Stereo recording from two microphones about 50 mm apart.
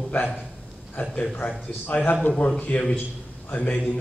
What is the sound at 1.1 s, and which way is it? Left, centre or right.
A man's voice, left.